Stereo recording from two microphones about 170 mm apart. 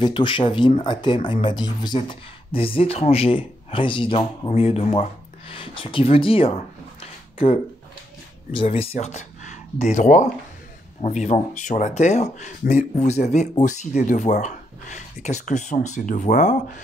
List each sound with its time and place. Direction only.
0.0 s speech: 30° left (ahead or behind)
7.0 s a sound: 35° left (ahead or behind)
8.5 s speech: 35° left (ahead or behind)